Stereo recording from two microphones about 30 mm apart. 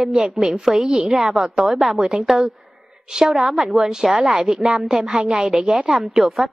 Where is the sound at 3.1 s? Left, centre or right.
Right.